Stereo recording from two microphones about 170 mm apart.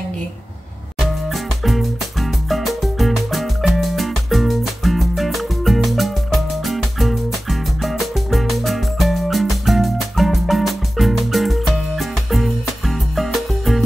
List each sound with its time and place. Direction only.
0.9 s music: centre (ahead or behind)